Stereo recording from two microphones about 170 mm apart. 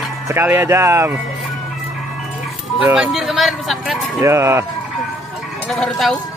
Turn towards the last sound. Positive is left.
turn(degrees=5)  # may be behind; listen again after turning